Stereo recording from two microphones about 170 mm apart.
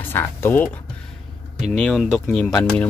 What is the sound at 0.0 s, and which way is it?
Speech, 10° left (ahead or behind).